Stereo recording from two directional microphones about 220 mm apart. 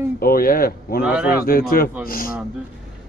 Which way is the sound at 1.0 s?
5° right (ahead or behind).